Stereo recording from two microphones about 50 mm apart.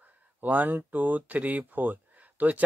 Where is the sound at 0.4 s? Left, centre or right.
Right.